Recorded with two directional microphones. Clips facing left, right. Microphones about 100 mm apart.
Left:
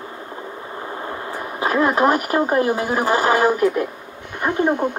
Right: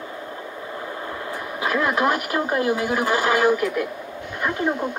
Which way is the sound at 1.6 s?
35° left (ahead or behind).